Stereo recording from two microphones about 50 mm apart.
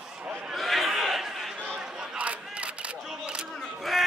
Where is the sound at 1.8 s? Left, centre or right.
Centre.